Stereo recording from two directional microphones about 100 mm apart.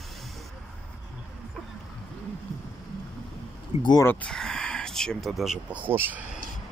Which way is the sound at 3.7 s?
90° left.